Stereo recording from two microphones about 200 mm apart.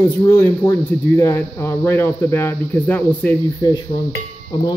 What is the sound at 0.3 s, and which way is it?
Speech, 10° left (ahead or behind).